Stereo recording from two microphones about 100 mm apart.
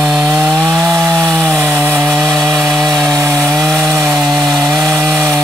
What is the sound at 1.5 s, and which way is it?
Chainsaw, 20° right (ahead or behind).